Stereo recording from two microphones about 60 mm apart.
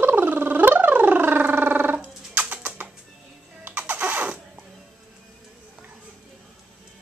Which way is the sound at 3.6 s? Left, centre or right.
Right.